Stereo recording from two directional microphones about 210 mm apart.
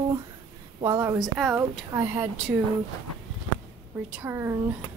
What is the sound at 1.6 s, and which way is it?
A woman's voice, 15° right (ahead or behind).